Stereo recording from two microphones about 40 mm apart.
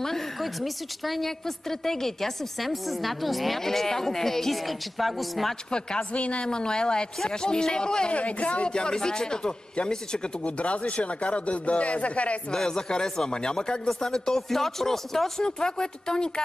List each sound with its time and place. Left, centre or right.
0.0 s a woman's voice: centre
5.7 s speech: left
6.1 s speech: left
6.4 s speech: left
8.1 s speech: left
12.6 s speech: centre
15.4 s speech: centre